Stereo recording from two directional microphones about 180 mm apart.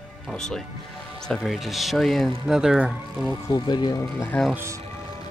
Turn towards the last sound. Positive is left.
turn(degrees=20)  # may be behind; listen again after turning